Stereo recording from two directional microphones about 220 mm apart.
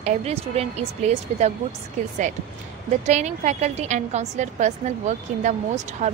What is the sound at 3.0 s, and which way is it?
A woman's voice, 30° right (ahead or behind).